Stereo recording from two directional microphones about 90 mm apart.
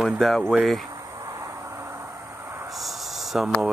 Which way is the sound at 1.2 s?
35° right (ahead or behind).